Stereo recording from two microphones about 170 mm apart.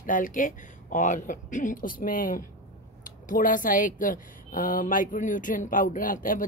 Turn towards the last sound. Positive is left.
turn(degrees=55)  # may be behind; listen again after turning